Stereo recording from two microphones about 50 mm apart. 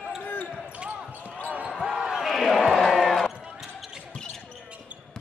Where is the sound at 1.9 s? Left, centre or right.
Centre.